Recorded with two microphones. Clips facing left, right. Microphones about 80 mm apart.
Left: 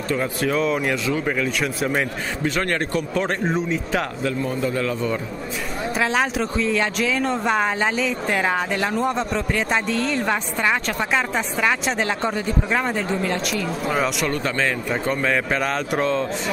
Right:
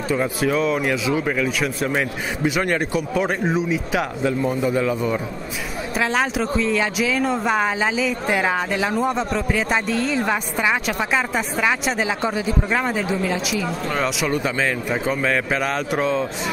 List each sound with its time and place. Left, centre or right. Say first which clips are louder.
0.1 s speech: right 2 dB; centre
4.2 s a man's voice: right 3 dB; centre
5.9 s speech: right 1 dB; centre
14.2 s speech: right 1 dB; centre